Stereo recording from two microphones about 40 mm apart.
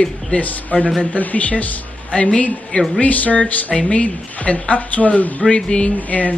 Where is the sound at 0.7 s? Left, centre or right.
Left.